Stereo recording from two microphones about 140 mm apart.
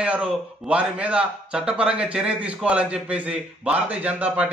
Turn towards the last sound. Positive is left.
turn(degrees=-10)  # may be behind; listen again after turning